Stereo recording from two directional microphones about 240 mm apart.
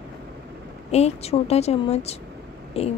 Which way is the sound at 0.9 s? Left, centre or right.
Left.